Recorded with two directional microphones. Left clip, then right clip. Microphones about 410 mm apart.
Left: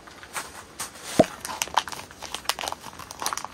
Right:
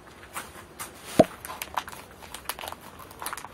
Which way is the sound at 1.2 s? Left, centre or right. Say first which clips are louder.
Even; centre.